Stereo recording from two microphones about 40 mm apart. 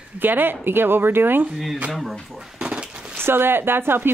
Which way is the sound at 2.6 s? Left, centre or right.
Right.